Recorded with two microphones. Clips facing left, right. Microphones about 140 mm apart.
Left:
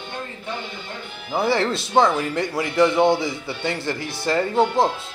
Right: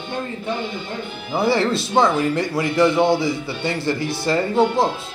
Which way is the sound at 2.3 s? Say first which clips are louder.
Right 2 dB; 20° left (ahead or behind).